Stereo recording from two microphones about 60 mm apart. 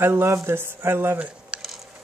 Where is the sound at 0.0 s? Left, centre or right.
Right.